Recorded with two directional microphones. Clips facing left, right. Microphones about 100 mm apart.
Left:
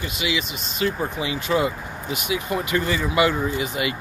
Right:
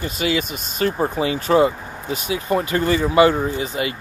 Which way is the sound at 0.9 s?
35° right (ahead or behind).